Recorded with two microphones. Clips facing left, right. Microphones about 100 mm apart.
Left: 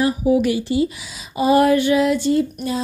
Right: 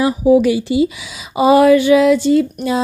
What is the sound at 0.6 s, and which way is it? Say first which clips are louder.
Speech: right 4 dB; 90° right.